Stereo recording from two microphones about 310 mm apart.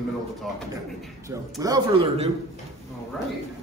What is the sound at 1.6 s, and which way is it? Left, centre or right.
Speech, centre.